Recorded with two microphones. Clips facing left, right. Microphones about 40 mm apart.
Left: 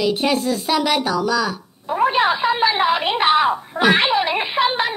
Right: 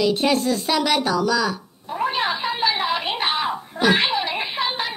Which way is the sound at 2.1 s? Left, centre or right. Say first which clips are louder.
Left 6 dB; left.